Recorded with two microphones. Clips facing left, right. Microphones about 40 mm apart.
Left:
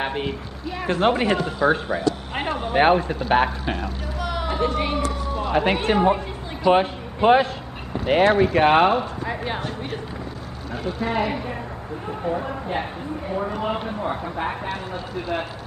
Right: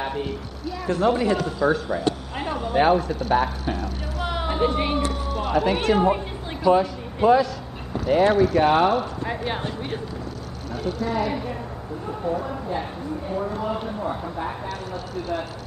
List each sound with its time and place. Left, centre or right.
0.0 s speech: left
2.3 s a sound: left
3.3 s speech: left
4.3 s a sound: centre
4.7 s speech: centre
5.5 s speech: left
6.7 s speech: left
9.2 s speech: centre
11.0 s speech: left
12.3 s speech: left
13.5 s speech: left